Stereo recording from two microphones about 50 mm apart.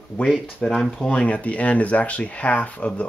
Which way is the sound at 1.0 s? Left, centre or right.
Left.